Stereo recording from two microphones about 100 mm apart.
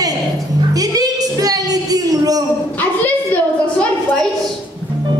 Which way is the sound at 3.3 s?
10° left (ahead or behind).